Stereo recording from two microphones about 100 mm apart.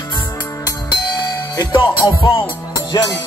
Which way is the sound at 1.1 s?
45° left (ahead or behind).